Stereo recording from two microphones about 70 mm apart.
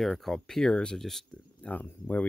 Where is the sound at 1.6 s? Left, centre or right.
Left.